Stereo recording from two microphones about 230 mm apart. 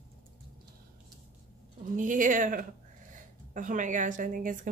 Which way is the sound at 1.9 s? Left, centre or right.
Right.